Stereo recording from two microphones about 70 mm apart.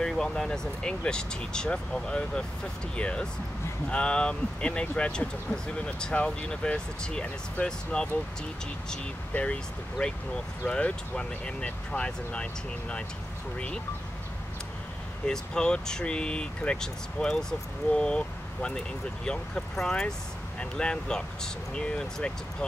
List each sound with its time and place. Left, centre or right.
0.0 s speech: centre
9.3 s speech: centre
15.2 s speech: centre